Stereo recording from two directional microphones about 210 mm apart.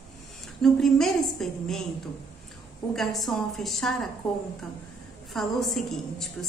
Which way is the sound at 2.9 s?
Centre (ahead or behind).